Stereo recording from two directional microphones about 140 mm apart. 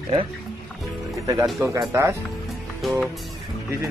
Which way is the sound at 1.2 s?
25° right (ahead or behind).